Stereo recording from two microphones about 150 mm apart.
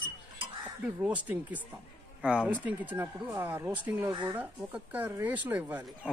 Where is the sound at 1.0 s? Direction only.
10° right (ahead or behind).